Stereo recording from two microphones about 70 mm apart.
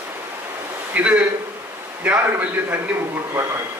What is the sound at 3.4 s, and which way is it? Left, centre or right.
Speech, right.